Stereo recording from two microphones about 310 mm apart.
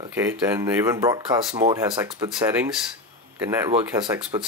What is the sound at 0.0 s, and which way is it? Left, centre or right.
Speech, centre.